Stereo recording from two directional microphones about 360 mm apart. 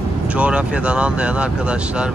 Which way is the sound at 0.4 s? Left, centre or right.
Centre.